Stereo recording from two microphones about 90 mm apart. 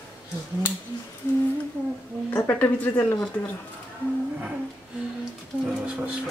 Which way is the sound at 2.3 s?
20° left (ahead or behind).